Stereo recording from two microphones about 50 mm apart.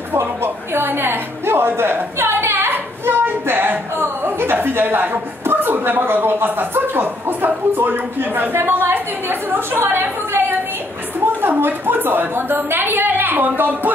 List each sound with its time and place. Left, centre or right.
0.1 s a woman's voice: right
11.4 s a woman's voice: right